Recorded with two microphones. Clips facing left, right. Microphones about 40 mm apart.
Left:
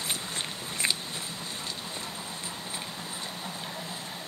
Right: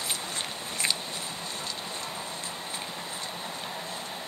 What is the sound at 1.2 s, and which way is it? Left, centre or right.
Vehicle, right.